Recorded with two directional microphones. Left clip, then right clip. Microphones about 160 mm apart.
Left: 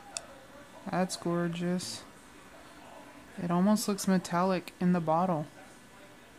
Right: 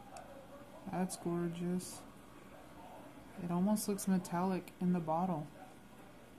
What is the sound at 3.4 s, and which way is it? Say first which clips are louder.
Speech: left 8 dB; 45° left (ahead or behind).